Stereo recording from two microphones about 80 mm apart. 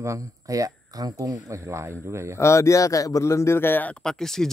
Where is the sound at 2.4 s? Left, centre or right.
Left.